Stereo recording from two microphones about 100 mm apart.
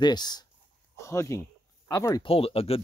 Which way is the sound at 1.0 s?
30° left (ahead or behind).